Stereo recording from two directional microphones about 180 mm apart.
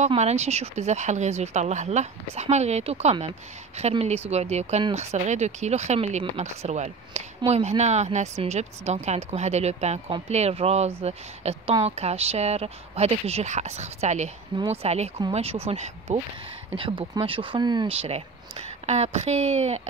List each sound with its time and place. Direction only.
0.0 s speech: 40° right (ahead or behind)